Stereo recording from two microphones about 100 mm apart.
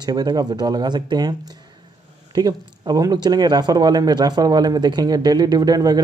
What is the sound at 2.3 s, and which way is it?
A man's voice, 45° right (ahead or behind).